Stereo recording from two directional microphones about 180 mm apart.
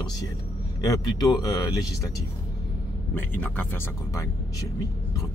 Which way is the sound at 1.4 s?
20° left (ahead or behind).